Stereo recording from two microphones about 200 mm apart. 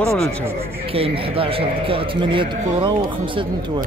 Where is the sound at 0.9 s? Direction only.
30° right (ahead or behind).